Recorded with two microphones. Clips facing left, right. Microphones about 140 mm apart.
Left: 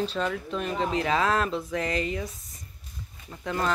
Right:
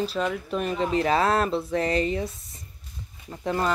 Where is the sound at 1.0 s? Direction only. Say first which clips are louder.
Right 3 dB; 35° right (ahead or behind).